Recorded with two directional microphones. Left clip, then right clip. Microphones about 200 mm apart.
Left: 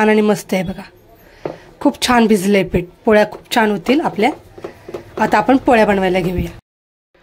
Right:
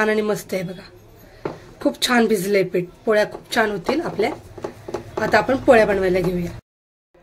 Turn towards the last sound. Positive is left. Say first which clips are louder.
# left 3 dB
turn(degrees=45)  # may be behind; listen again after turning